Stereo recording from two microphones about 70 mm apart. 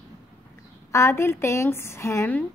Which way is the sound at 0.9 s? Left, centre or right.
Left.